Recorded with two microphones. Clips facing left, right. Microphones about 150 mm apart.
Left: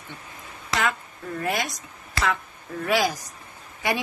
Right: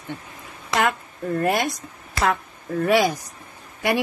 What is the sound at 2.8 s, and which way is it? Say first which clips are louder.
Speech: right 4 dB; 55° right (ahead or behind).